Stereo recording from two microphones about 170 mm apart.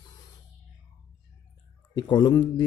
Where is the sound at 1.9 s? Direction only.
25° left (ahead or behind).